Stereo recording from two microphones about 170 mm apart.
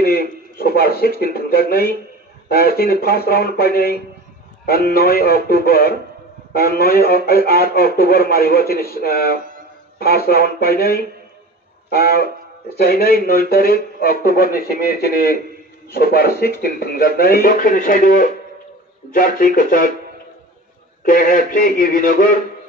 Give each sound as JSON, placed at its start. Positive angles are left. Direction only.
{"t": 0.0, "sound": "a man's voice", "side_deg": 65}
{"t": 21.0, "sound": "a man's voice", "side_deg": 55}